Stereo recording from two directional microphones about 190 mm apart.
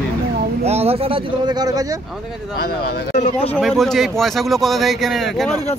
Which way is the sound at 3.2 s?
35° left (ahead or behind).